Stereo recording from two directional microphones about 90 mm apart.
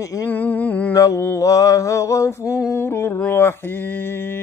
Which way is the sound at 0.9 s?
40° left (ahead or behind).